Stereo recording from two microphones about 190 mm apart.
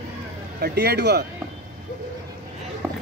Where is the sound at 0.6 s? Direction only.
60° right (ahead or behind).